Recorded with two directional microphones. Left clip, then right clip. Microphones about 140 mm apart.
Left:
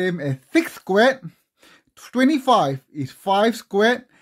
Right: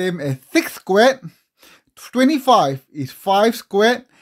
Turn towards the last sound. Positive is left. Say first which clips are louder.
# right 3 dB
turn(degrees=-15)  # may be behind; listen again after turning